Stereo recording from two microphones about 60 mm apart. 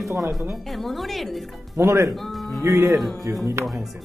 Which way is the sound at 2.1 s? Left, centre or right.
Centre.